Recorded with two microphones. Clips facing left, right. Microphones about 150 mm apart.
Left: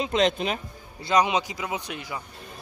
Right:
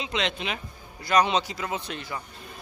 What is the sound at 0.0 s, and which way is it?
Speech, 45° left (ahead or behind).